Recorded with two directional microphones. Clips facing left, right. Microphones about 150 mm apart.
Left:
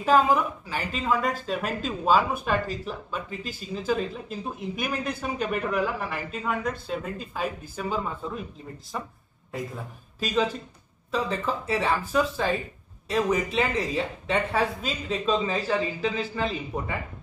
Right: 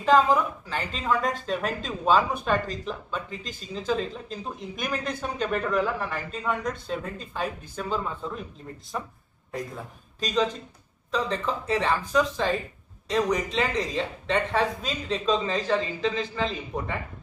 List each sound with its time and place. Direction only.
0.0 s speech: 10° left (ahead or behind)
9.5 s a man's voice: 5° left (ahead or behind)